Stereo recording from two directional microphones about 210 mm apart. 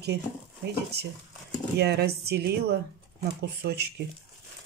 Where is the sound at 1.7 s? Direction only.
50° right (ahead or behind).